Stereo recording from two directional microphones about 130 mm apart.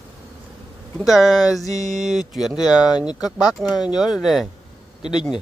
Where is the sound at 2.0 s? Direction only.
Centre (ahead or behind).